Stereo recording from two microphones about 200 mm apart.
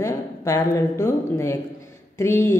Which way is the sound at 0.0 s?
15° left (ahead or behind).